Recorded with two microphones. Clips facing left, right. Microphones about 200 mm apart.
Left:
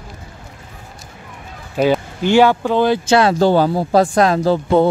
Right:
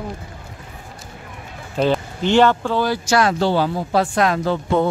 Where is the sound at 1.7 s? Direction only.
10° left (ahead or behind).